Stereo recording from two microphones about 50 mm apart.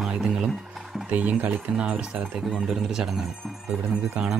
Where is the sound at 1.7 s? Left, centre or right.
Centre.